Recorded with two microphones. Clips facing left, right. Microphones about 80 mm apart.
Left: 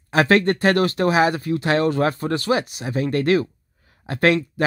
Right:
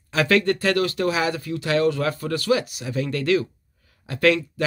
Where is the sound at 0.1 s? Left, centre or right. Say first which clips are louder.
Left 3 dB; left.